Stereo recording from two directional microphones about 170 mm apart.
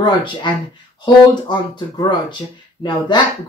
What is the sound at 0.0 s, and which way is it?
Speech, 25° left (ahead or behind).